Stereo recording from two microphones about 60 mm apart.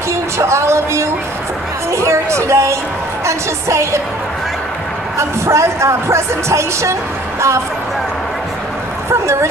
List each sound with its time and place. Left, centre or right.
0.1 s music: right
3.3 s speech: right
5.1 s speech: right
9.1 s speech: right